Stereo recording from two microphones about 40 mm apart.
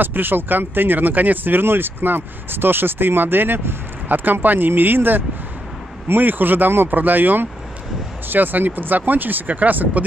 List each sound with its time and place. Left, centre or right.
0.0 s speech: right
4.1 s speech: right